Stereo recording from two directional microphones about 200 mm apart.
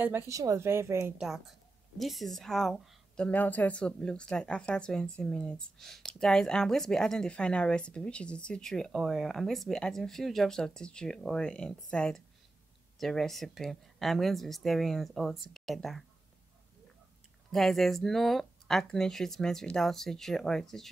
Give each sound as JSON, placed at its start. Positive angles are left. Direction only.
{"t": 0.0, "sound": "speech", "side_deg": -15}
{"t": 17.5, "sound": "speech", "side_deg": 0}